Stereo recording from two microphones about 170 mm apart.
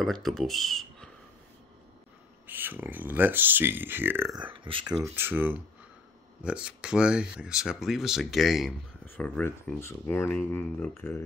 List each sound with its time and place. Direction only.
0.0 s speech: centre (ahead or behind)
2.4 s speech: 10° right (ahead or behind)
4.4 s speech: 30° right (ahead or behind)
4.9 s speech: 15° right (ahead or behind); by 11.2 s 15° left (ahead or behind)